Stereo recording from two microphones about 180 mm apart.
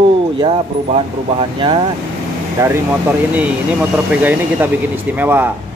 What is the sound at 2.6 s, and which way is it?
Speech, 15° right (ahead or behind).